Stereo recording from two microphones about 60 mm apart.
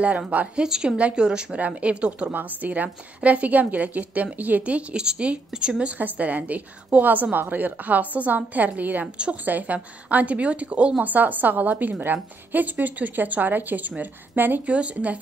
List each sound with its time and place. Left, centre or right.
0.6 s a woman's voice: centre
2.3 s a woman's voice: right
14.7 s a woman's voice: right